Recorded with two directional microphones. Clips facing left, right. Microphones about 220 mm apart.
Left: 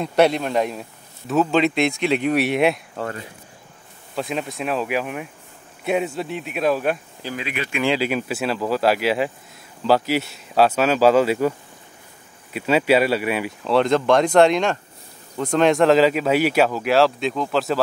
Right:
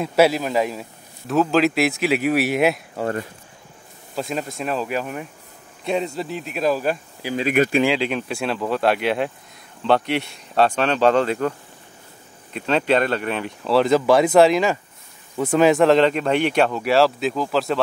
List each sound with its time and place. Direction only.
0.0 s a man's voice: 5° right (ahead or behind)
4.1 s a man's voice: centre (ahead or behind)
7.4 s speech: 45° right (ahead or behind)
7.9 s a man's voice: 5° left (ahead or behind)
12.5 s speech: 5° left (ahead or behind)
13.7 s a man's voice: 5° right (ahead or behind)